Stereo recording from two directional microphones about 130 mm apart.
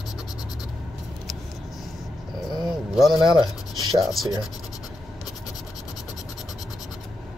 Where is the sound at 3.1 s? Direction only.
35° right (ahead or behind).